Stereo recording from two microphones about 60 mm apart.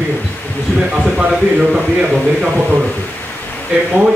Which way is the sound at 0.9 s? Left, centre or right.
Centre.